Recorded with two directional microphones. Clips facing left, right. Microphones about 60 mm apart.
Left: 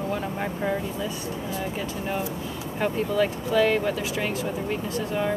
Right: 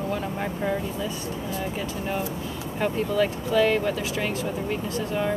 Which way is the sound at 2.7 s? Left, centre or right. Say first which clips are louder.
Even; centre.